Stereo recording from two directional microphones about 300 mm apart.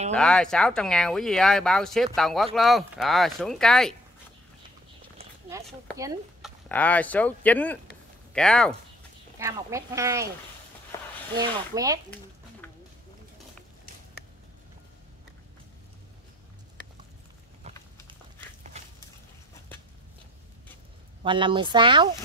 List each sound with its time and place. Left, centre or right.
0.1 s speech: centre
5.9 s a sound: centre
6.7 s speech: centre
9.4 s speech: centre
10.9 s a sound: centre
11.4 s speech: centre
21.2 s speech: centre